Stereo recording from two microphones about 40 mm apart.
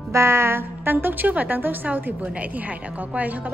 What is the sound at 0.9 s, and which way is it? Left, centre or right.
A woman's voice, right.